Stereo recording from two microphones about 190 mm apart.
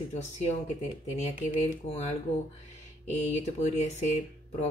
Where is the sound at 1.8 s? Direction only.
35° left (ahead or behind).